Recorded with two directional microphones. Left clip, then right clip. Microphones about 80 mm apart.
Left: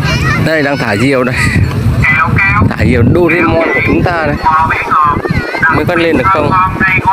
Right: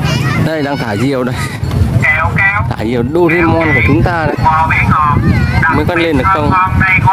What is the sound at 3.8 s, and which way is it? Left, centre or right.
Speech, centre.